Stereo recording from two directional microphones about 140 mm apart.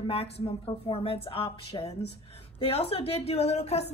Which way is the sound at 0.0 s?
40° left (ahead or behind).